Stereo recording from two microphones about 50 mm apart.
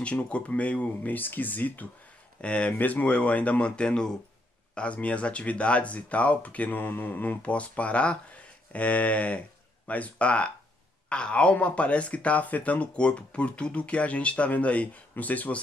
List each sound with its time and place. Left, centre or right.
0.0 s speech: left
2.4 s speech: left
4.7 s speech: left
7.4 s speech: left